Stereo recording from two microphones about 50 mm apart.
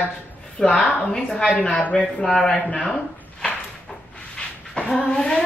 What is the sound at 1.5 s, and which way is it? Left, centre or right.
Speech, left.